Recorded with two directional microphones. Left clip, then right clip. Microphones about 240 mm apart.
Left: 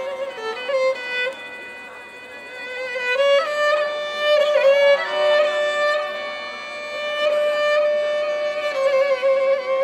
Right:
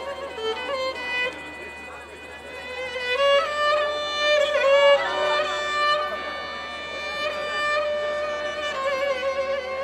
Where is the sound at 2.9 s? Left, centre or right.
Centre.